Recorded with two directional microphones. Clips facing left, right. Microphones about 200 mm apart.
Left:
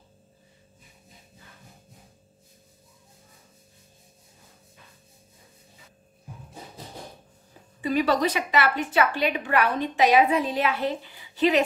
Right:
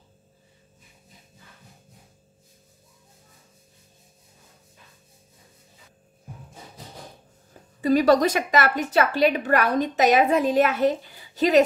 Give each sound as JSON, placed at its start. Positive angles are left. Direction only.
{"t": 7.8, "sound": "a woman's voice", "side_deg": -40}